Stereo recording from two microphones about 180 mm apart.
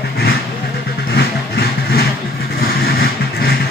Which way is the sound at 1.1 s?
60° left (ahead or behind).